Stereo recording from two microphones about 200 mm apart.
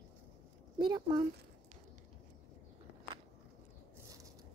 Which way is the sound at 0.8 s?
20° right (ahead or behind).